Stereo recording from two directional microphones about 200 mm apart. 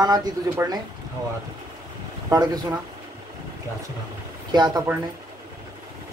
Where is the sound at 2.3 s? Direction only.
20° right (ahead or behind).